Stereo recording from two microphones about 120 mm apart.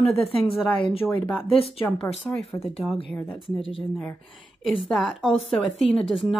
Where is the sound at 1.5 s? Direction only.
50° left (ahead or behind).